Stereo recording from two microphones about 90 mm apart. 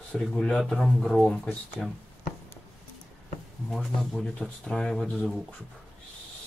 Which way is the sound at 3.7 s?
Centre (ahead or behind).